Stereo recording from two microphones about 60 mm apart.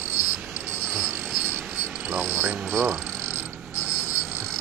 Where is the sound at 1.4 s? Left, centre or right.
Centre.